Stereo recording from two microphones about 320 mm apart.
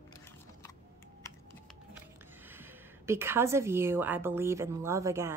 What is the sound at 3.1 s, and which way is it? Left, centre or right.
A woman's voice, centre.